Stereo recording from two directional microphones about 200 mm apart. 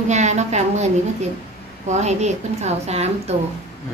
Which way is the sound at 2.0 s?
35° right (ahead or behind).